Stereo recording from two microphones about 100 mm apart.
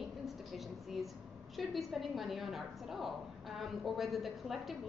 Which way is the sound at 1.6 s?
Centre (ahead or behind).